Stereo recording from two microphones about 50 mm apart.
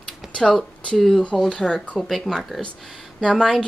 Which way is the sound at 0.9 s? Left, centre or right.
Centre.